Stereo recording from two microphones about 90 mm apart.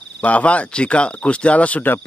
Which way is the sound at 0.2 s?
15° left (ahead or behind).